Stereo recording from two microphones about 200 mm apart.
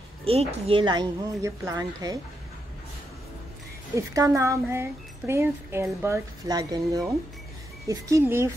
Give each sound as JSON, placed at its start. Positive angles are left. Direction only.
{"t": 0.2, "sound": "speech", "side_deg": -30}
{"t": 3.9, "sound": "speech", "side_deg": -15}